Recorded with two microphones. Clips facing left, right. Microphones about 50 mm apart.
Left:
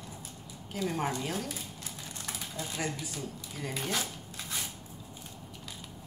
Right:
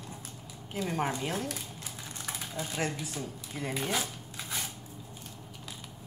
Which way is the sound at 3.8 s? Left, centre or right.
Centre.